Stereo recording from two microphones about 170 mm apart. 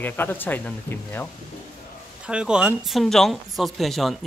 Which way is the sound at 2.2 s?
5° right (ahead or behind).